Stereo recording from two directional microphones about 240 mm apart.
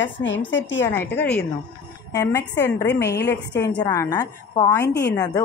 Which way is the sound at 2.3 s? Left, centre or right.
Left.